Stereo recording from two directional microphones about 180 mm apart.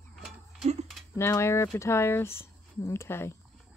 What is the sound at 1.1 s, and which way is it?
Speech, 15° left (ahead or behind).